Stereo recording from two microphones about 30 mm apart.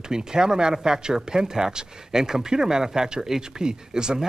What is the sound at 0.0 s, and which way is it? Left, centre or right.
Speech, right.